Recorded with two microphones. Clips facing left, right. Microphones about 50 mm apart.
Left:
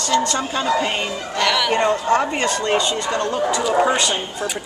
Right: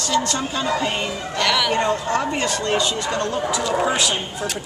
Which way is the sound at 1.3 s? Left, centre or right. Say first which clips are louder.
Left 1 dB; centre.